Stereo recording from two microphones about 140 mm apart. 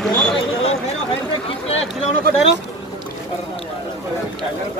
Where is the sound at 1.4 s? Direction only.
45° left (ahead or behind).